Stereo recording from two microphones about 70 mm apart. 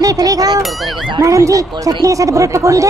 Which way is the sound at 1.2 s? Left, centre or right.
Right.